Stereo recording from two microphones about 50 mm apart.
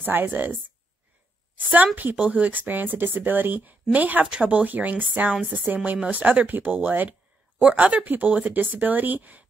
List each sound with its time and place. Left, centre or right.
0.0 s speech: right
1.6 s speech: right